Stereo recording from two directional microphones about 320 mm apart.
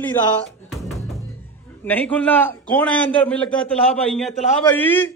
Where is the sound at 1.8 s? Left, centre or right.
Centre.